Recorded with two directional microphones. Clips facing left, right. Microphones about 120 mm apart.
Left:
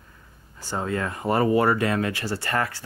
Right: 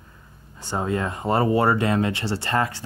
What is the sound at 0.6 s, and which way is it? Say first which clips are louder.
Speech: right 2 dB; 20° right (ahead or behind).